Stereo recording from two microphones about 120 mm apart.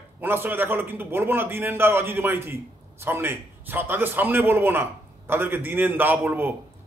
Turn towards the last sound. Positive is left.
turn(degrees=-15)  # may be behind; listen again after turning